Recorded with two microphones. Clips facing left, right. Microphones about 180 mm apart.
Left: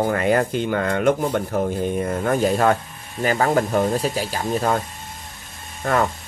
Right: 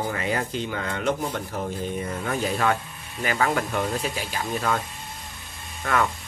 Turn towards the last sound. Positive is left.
turn(degrees=40)  # may be behind; listen again after turning